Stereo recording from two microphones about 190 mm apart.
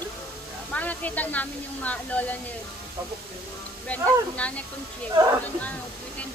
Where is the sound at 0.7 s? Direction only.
10° left (ahead or behind).